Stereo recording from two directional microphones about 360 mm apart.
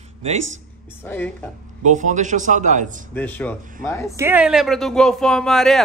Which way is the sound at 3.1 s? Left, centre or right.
Centre.